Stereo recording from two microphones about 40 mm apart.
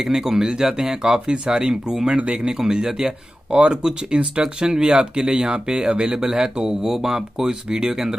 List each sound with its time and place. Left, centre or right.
0.0 s speech: centre
3.5 s speech: right